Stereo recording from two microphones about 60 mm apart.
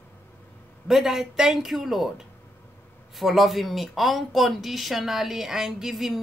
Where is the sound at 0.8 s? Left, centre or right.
Centre.